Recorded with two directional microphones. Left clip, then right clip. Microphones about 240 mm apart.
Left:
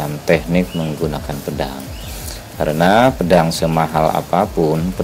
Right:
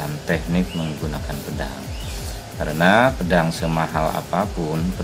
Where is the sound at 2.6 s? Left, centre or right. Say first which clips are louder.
Left 4 dB; left.